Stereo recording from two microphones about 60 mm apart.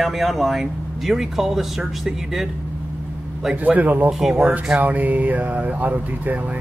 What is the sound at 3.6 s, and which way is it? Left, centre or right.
Speech, right.